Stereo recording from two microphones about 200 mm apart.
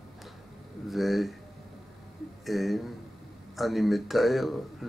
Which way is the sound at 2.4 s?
Centre (ahead or behind).